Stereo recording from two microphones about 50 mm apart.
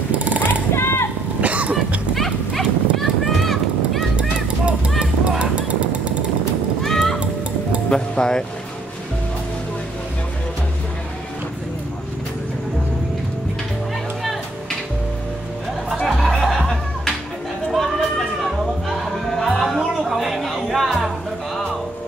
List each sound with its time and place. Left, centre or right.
0.2 s a sound: right
0.7 s a sound: left
1.4 s music: right
2.1 s clip-clop: centre
4.2 s a sound: right
5.4 s music: right
6.8 s music: centre
8.2 s speech: centre
15.9 s music: centre